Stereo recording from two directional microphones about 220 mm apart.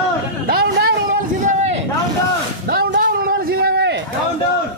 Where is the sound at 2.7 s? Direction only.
45° right (ahead or behind).